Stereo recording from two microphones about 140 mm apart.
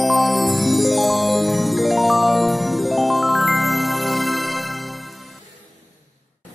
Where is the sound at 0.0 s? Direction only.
Centre (ahead or behind).